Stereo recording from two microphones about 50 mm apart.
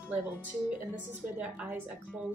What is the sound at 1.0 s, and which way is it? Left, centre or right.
Speech, right.